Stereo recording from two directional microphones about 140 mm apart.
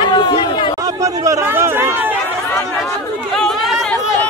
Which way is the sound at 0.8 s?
25° right (ahead or behind).